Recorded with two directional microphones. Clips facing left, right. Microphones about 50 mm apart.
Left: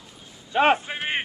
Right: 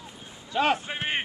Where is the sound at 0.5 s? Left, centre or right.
Left.